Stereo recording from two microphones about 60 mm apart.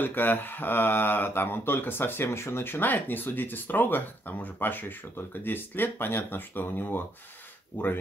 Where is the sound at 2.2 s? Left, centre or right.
Left.